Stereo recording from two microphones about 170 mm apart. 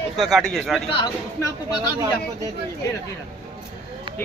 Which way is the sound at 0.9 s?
25° left (ahead or behind).